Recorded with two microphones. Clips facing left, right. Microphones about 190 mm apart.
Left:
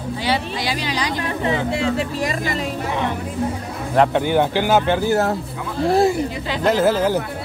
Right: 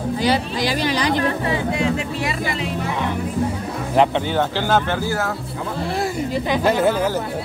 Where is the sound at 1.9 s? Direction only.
40° left (ahead or behind).